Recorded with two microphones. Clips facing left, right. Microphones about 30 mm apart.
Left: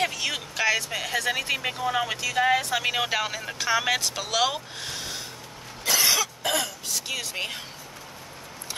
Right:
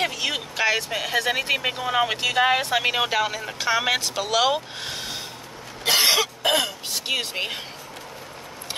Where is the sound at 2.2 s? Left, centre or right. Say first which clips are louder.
Right 3 dB; right.